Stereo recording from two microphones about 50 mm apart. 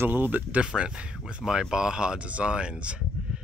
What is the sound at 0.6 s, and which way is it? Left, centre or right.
Speech, right.